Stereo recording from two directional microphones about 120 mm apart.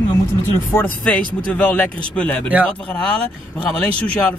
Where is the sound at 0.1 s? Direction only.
20° left (ahead or behind).